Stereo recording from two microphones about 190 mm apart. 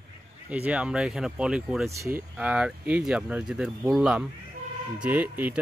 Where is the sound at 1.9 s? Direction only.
15° right (ahead or behind).